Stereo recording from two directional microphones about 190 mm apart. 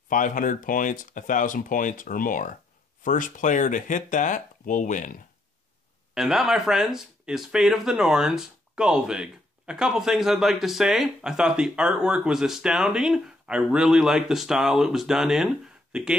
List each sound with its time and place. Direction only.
0.1 s speech: 45° left (ahead or behind)
6.1 s speech: centre (ahead or behind)